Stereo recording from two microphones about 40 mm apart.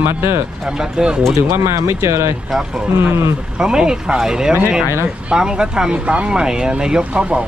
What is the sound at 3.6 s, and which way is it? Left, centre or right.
Speech, centre.